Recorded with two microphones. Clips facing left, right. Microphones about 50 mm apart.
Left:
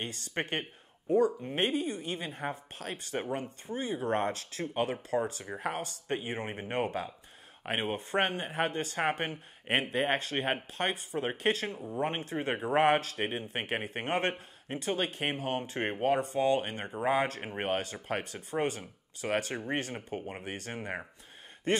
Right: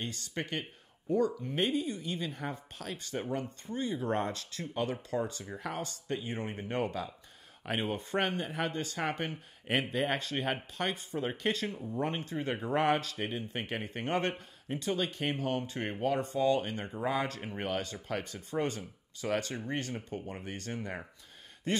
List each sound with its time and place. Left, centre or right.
0.0 s speech: left
1.8 s speech: left
3.7 s speech: centre
4.3 s speech: left
6.3 s speech: left